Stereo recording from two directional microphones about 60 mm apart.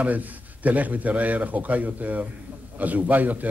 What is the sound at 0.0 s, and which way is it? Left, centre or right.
A man's voice, right.